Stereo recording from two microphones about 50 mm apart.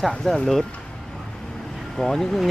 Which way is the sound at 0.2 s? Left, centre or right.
Centre.